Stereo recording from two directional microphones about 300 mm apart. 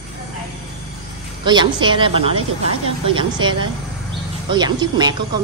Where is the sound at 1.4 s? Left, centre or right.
Centre.